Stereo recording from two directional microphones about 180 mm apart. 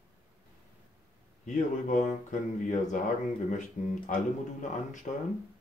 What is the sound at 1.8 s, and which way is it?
Speech, 45° left (ahead or behind).